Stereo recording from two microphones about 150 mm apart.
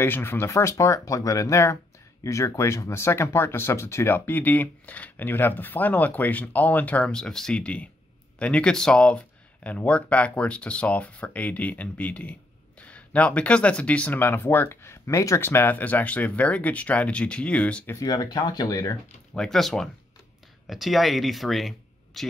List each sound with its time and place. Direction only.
0.0 s speech: 15° left (ahead or behind)
17.9 s speech: 25° left (ahead or behind)
19.3 s speech: 5° left (ahead or behind)